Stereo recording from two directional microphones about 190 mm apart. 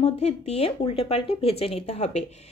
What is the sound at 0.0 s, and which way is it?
Speech, 35° left (ahead or behind).